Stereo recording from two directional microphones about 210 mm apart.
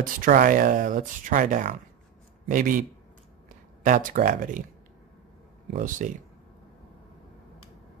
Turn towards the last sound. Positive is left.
turn(degrees=-40)  # may be behind; listen again after turning